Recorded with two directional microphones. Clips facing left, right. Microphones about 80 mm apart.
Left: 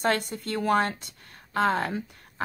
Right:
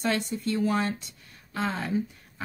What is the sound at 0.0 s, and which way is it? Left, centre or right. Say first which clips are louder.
Speech: left 1 dB; left.